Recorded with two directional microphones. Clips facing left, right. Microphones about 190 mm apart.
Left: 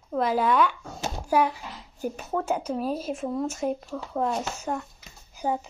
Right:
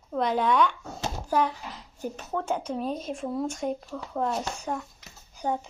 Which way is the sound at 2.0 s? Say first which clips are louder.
Left 3 dB; 10° left (ahead or behind).